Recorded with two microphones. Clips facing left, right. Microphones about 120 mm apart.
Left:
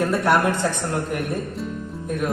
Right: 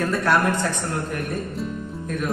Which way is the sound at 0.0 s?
20° left (ahead or behind).